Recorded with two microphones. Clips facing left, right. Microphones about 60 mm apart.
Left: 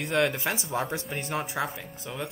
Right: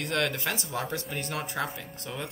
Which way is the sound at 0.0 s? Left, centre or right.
Centre.